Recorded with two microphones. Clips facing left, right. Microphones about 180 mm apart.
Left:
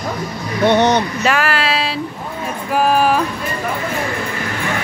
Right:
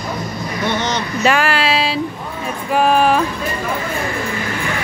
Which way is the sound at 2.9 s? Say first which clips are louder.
Right 1 dB; 5° left (ahead or behind).